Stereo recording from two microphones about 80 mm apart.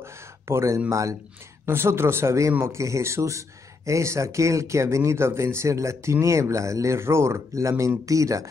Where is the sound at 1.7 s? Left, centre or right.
Right.